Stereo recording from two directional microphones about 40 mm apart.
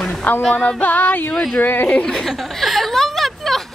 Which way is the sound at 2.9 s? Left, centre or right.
Centre.